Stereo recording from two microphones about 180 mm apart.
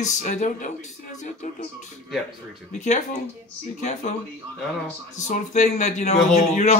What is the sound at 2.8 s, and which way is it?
Speech, 40° left (ahead or behind).